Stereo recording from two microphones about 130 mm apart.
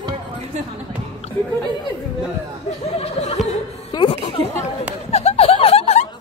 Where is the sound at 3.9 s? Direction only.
35° left (ahead or behind).